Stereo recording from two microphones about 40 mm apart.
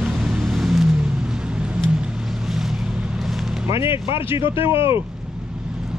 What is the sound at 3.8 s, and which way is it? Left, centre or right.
Speech, right.